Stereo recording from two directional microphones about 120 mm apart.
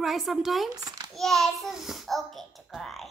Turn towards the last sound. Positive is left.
turn(degrees=0)  # may be behind; listen again after turning